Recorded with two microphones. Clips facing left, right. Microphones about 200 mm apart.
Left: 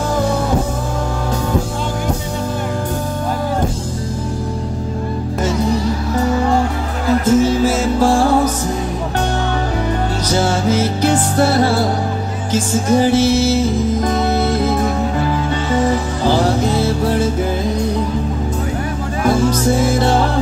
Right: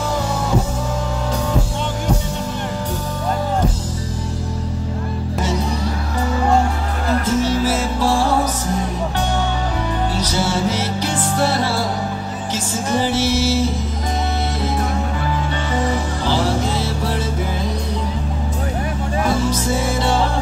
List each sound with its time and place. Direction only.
7.2 s music: 50° left (ahead or behind)
10.2 s music: 45° left (ahead or behind)
16.3 s music: 50° left (ahead or behind)
19.2 s music: 50° left (ahead or behind)